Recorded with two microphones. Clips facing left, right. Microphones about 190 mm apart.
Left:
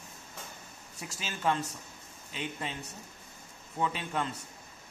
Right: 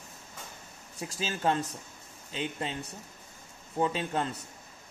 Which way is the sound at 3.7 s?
30° right (ahead or behind).